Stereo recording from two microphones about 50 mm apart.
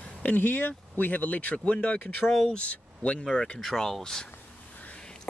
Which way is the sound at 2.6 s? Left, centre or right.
Left.